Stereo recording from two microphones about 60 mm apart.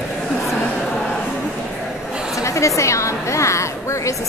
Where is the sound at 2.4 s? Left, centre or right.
Left.